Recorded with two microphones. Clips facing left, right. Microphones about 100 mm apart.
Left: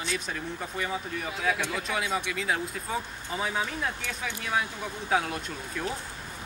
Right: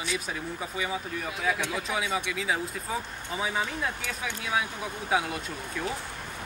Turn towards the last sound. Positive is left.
turn(degrees=0)  # may be behind; listen again after turning